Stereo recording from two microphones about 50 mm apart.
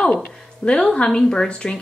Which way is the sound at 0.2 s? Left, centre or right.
Centre.